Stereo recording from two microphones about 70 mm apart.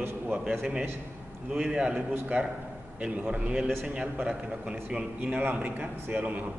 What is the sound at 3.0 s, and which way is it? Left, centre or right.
A man's voice, centre.